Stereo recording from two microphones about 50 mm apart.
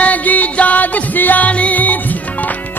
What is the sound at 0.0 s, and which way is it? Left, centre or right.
Music, left.